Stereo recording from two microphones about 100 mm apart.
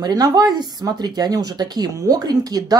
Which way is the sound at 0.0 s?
40° right (ahead or behind).